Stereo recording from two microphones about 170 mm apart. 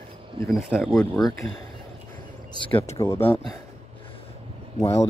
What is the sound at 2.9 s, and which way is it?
Speech, 15° left (ahead or behind).